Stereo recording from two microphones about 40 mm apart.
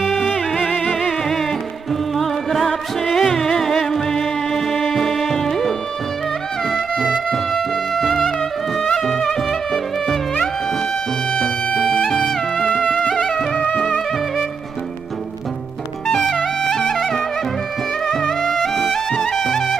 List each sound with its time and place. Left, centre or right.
0.0 s music: centre
0.7 s music: centre
8.9 s music: centre
11.3 s music: left
12.6 s music: left
13.1 s music: centre
13.6 s music: left
16.1 s music: centre